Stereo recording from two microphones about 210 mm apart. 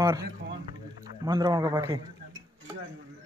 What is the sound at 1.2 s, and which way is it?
Speech, 20° right (ahead or behind).